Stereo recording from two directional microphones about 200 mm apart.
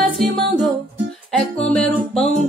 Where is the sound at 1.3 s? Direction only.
5° left (ahead or behind).